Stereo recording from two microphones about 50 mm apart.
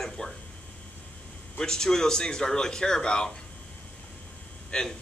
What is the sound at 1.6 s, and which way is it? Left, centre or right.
A man's voice, centre.